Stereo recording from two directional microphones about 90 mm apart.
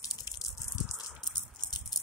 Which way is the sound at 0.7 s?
10° right (ahead or behind).